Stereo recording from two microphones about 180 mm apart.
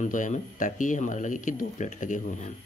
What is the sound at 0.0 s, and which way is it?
Speech, 45° left (ahead or behind).